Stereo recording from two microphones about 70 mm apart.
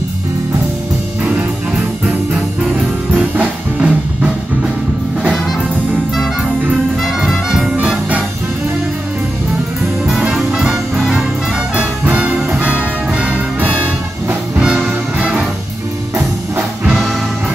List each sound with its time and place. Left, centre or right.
2.0 s music: centre
7.0 s music: centre
10.3 s music: centre
12.0 s music: right
15.1 s music: centre